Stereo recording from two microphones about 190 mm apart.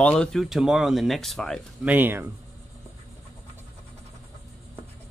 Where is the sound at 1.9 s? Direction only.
10° right (ahead or behind).